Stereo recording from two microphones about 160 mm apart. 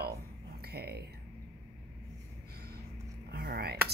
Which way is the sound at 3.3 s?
70° right (ahead or behind).